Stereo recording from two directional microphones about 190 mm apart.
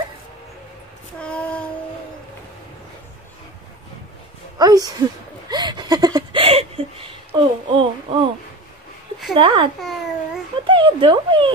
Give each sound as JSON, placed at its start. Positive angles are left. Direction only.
{"t": 1.2, "sound": "child singing", "side_deg": 5}
{"t": 4.6, "sound": "a woman's voice", "side_deg": -20}
{"t": 5.5, "sound": "a sound", "side_deg": -20}
{"t": 9.3, "sound": "a woman's voice", "side_deg": -25}
{"t": 9.8, "sound": "babbling", "side_deg": 0}
{"t": 10.7, "sound": "speech", "side_deg": -25}